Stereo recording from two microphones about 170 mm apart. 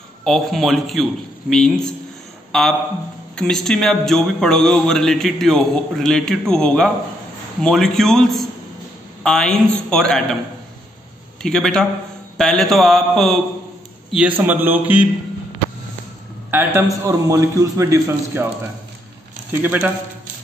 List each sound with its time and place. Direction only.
0.2 s speech: centre (ahead or behind)
11.4 s a man's voice: 5° left (ahead or behind)
16.4 s a man's voice: 15° right (ahead or behind)
19.6 s a man's voice: 10° right (ahead or behind)